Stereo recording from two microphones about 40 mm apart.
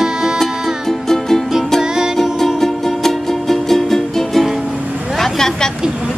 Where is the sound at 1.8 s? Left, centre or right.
Centre.